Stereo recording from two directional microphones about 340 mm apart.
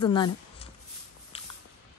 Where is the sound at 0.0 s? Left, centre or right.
Centre.